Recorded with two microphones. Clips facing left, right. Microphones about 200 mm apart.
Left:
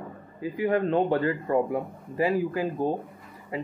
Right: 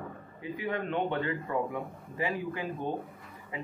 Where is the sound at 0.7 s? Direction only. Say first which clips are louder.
Left 8 dB; 35° left (ahead or behind).